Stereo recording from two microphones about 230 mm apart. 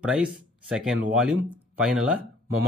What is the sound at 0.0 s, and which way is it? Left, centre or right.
Speech, centre.